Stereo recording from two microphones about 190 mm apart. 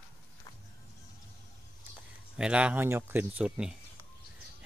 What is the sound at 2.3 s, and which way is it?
Speech, 5° right (ahead or behind).